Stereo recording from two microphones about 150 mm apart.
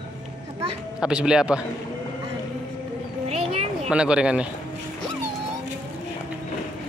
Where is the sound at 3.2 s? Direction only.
45° right (ahead or behind).